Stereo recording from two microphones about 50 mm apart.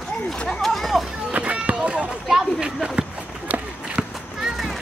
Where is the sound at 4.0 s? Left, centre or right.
Right.